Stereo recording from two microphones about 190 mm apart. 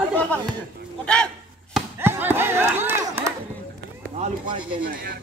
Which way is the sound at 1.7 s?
10° right (ahead or behind).